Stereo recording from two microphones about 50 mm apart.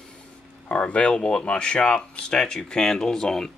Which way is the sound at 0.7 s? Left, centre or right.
Left.